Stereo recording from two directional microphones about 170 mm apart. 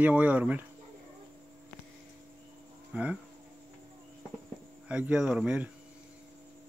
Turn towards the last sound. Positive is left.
turn(degrees=-5)  # may be behind; listen again after turning